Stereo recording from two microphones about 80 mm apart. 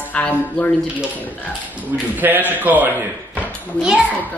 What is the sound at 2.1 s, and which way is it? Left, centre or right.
Speech, right.